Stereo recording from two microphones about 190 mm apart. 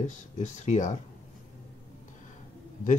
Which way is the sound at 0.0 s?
40° left (ahead or behind).